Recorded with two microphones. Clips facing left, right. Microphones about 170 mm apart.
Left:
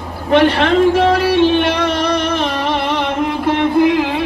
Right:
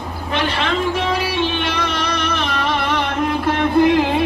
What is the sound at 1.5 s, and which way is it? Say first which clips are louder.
Music: left 7 dB; 60° left (ahead or behind).